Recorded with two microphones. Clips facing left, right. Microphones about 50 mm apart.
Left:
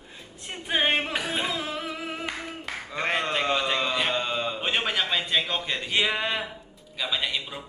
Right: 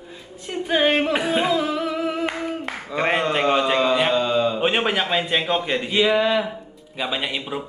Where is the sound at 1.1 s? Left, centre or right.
Right.